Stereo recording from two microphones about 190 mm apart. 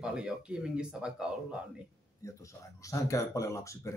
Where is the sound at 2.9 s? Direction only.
15° left (ahead or behind).